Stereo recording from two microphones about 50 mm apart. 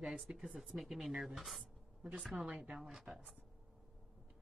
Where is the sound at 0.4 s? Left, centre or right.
Centre.